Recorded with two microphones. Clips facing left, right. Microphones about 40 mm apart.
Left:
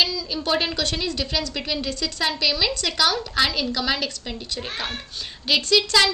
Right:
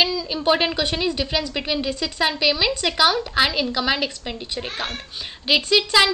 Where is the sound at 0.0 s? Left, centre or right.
Centre.